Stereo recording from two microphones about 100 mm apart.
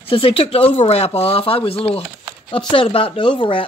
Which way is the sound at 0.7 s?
90° left.